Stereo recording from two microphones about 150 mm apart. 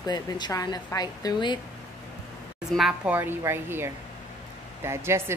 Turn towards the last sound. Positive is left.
turn(degrees=-15)  # may be behind; listen again after turning